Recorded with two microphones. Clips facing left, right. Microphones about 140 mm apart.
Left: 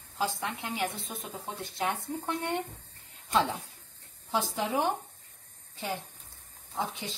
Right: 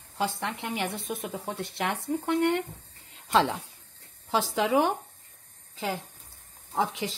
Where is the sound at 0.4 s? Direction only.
75° right (ahead or behind).